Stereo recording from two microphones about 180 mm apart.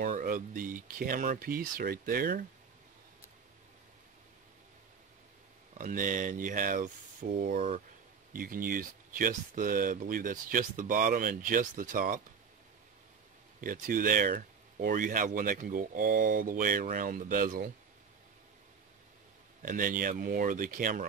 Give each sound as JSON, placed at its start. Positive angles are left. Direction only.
{"t": 0.0, "sound": "speech", "side_deg": -50}
{"t": 5.8, "sound": "speech", "side_deg": -45}
{"t": 13.6, "sound": "speech", "side_deg": -50}
{"t": 19.6, "sound": "speech", "side_deg": -50}